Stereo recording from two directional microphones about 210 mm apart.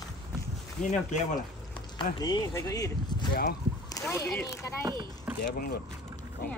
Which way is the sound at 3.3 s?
50° left (ahead or behind).